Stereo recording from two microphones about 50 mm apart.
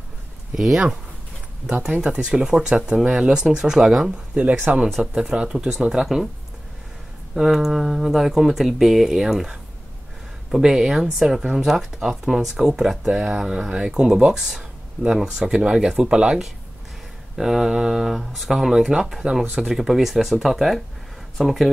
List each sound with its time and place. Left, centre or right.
0.6 s speech: centre
1.7 s speech: centre
4.7 s speech: right
5.0 s speech: centre
5.8 s speech: centre
7.3 s speech: centre
15.0 s speech: right
15.3 s speech: centre